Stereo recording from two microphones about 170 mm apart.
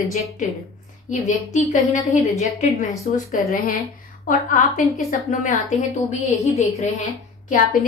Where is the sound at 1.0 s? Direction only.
45° left (ahead or behind).